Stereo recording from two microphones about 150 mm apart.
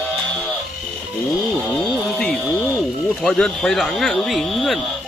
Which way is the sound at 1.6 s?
10° left (ahead or behind).